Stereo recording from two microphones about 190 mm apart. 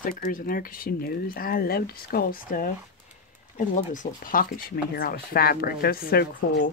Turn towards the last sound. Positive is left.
turn(degrees=50)  # may be behind; listen again after turning